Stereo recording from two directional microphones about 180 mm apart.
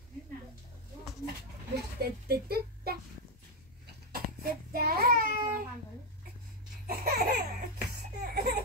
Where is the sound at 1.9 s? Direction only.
60° right (ahead or behind).